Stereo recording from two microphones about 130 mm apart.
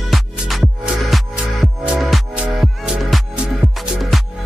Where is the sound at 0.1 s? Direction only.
Centre (ahead or behind).